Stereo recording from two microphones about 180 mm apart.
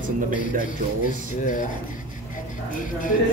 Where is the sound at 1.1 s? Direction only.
45° left (ahead or behind).